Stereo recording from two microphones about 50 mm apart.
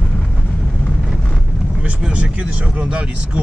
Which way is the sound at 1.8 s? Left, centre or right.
Right.